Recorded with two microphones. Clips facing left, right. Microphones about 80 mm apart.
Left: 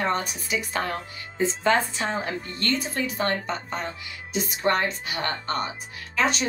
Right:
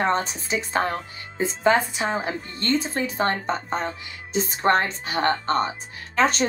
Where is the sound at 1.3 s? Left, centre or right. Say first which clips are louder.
Right 2 dB; centre.